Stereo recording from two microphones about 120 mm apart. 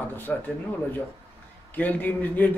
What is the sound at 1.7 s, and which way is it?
Speech, 15° left (ahead or behind).